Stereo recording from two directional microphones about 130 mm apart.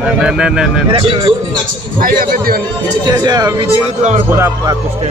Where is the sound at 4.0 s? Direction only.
65° right (ahead or behind).